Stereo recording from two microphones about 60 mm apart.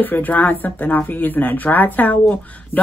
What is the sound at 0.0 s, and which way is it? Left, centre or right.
Speech, left.